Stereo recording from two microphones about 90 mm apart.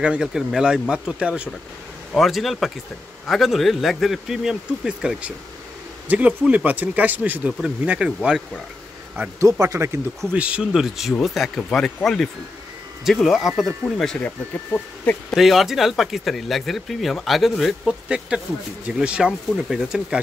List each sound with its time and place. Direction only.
0.0 s speech: 10° right (ahead or behind)
2.1 s speech: centre (ahead or behind)
9.4 s speech: 35° right (ahead or behind)
10.3 s speech: 15° right (ahead or behind)
14.1 s speech: 15° left (ahead or behind)
15.3 s speech: centre (ahead or behind)
18.0 s speech: 10° right (ahead or behind)